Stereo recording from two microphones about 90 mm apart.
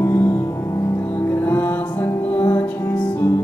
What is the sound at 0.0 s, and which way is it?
Music, 25° left (ahead or behind).